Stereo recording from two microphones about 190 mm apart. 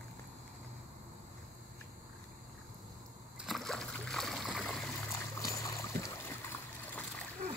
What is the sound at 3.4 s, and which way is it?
Splash, centre (ahead or behind).